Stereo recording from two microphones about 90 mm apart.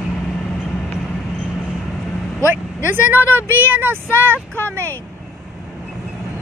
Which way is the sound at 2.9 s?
20° right (ahead or behind).